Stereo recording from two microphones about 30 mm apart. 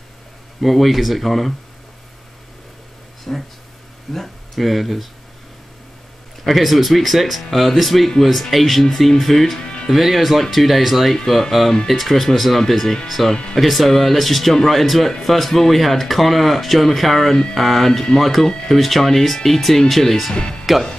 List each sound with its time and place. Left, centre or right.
0.6 s speech: centre
3.3 s speech: left
4.1 s speech: centre
6.4 s speech: centre
11.9 s speech: centre
20.7 s speech: centre